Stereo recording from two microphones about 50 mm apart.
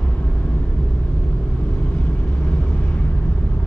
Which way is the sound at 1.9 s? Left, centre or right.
Left.